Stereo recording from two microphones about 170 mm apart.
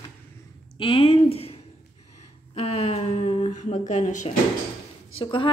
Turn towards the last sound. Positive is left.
turn(degrees=30)  # may be behind; listen again after turning